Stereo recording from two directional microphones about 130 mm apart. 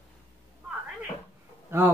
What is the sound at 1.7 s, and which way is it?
Speech, 20° right (ahead or behind).